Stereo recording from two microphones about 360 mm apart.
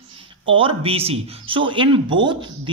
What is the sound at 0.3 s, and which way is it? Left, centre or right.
A man's voice, centre.